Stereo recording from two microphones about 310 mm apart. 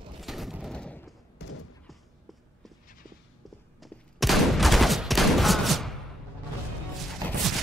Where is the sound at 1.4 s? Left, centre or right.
Left.